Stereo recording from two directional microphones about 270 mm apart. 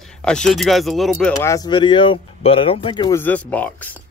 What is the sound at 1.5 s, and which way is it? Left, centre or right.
Speech, centre.